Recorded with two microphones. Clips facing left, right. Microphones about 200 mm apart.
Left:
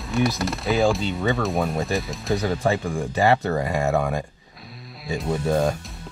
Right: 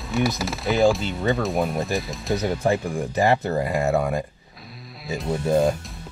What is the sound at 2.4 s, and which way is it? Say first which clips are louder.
Speech: right 2 dB; 15° right (ahead or behind).